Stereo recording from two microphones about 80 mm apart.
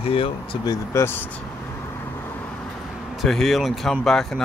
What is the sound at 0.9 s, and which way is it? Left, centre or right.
Speech, left.